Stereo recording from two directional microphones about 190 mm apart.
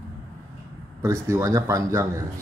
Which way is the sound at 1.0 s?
15° right (ahead or behind).